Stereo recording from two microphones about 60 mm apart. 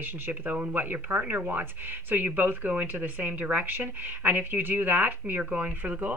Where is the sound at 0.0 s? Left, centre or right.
Right.